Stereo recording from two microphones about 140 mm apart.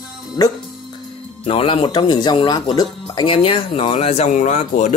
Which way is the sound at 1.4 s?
40° left (ahead or behind).